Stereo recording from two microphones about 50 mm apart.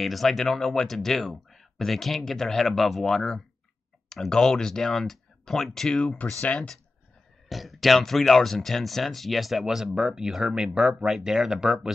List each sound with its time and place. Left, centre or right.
0.0 s speech: centre
6.4 s speech: left
7.4 s speech: centre